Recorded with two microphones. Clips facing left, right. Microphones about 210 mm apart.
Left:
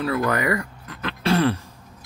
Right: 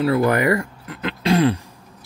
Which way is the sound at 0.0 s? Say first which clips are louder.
Right 5 dB; 30° right (ahead or behind).